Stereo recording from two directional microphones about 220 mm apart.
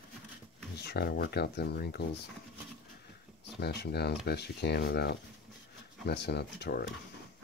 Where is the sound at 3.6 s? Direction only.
50° left (ahead or behind).